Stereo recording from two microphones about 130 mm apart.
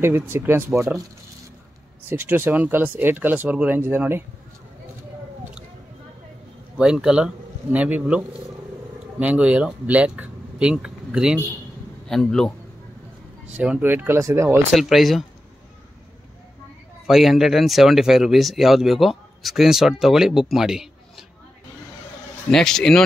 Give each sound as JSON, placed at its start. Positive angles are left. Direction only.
{"t": 0.0, "sound": "speech", "side_deg": -15}
{"t": 2.0, "sound": "speech", "side_deg": -15}
{"t": 6.8, "sound": "speech", "side_deg": -5}
{"t": 9.2, "sound": "speech", "side_deg": -10}
{"t": 12.1, "sound": "speech", "side_deg": 5}
{"t": 13.6, "sound": "speech", "side_deg": -10}
{"t": 14.7, "sound": "speech", "side_deg": 0}
{"t": 17.0, "sound": "speech", "side_deg": 0}
{"t": 22.5, "sound": "speech", "side_deg": 5}